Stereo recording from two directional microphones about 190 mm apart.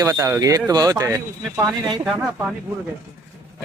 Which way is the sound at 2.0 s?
5° right (ahead or behind).